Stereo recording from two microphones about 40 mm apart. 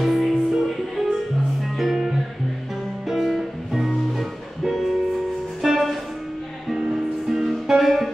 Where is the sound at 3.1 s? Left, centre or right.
Centre.